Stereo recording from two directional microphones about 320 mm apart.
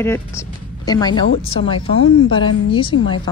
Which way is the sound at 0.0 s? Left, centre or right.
Centre.